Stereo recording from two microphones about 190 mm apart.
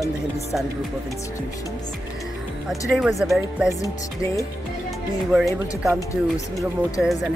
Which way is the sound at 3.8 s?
15° left (ahead or behind).